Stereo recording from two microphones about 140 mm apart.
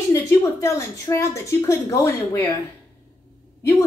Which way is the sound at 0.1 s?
20° left (ahead or behind).